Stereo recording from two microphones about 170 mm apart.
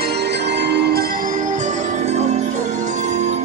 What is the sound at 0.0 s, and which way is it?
Music, 75° right (ahead or behind).